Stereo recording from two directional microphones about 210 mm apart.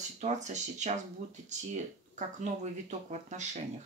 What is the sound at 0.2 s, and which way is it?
Speech, 35° right (ahead or behind).